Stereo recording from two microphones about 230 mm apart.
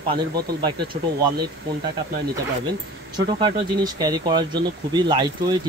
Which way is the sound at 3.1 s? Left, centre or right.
Centre.